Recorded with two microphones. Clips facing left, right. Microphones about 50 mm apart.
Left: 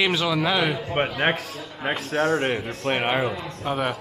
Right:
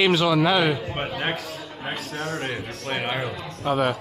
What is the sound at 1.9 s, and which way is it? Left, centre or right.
Speech, left.